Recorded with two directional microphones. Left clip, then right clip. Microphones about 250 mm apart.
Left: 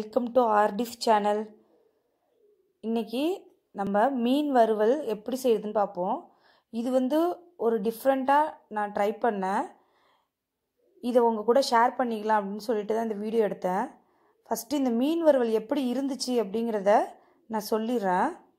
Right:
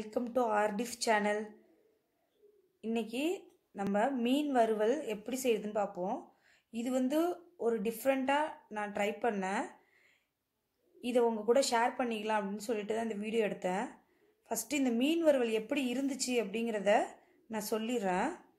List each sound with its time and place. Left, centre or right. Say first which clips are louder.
0.0 s speech: left 9 dB; left
2.8 s a woman's voice: left 6 dB; left
11.0 s speech: left 7 dB; centre